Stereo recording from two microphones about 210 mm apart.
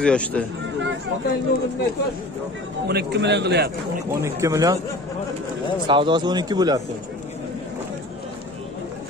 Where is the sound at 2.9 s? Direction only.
50° right (ahead or behind).